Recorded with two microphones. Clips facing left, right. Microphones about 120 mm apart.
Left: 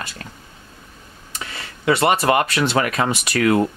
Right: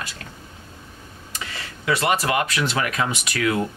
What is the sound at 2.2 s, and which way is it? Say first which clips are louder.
Speech: left 5 dB; 50° left (ahead or behind).